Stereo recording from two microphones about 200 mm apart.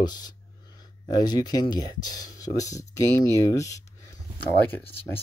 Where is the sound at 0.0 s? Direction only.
20° left (ahead or behind).